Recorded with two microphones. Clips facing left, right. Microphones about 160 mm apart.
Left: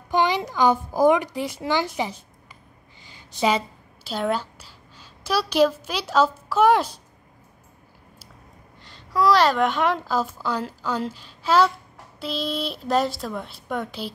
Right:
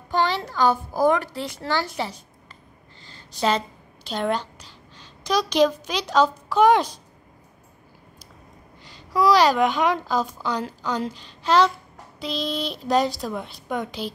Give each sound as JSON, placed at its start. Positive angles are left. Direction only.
{"t": 0.1, "sound": "a woman's voice", "side_deg": 15}
{"t": 8.8, "sound": "a child's voice", "side_deg": 0}